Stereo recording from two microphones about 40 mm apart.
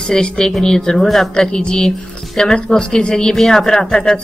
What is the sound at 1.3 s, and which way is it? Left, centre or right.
A woman's voice, left.